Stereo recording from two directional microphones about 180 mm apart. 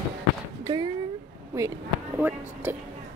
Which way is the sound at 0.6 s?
20° right (ahead or behind).